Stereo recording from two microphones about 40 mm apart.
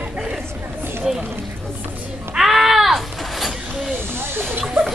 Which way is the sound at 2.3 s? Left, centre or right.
Centre.